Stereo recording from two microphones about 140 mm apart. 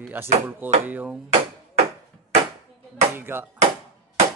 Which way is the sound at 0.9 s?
10° right (ahead or behind).